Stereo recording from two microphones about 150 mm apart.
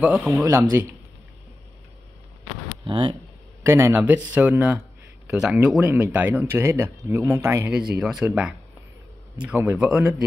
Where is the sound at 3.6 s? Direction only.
20° right (ahead or behind).